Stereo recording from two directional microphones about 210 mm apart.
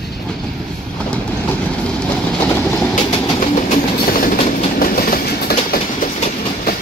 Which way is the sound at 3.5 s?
35° left (ahead or behind).